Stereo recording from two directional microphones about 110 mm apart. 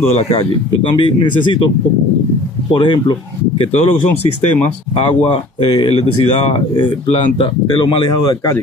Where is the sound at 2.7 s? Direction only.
50° left (ahead or behind).